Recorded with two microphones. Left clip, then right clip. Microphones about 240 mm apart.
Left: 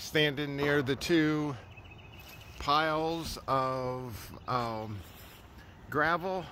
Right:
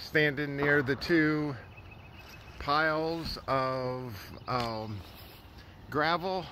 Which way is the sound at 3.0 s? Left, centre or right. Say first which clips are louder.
Even; left.